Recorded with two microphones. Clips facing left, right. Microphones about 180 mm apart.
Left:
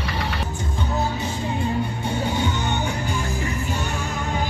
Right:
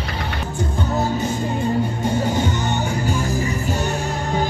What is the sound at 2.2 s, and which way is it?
Music, 45° right (ahead or behind).